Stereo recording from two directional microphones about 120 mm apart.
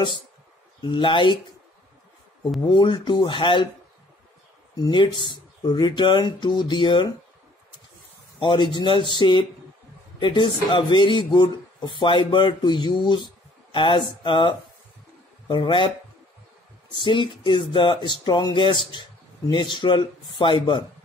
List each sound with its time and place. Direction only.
0.7 s speech: 40° left (ahead or behind)
2.6 s speech: 40° left (ahead or behind)
4.7 s speech: 40° left (ahead or behind)
8.4 s speech: 40° left (ahead or behind)
16.9 s speech: 45° left (ahead or behind)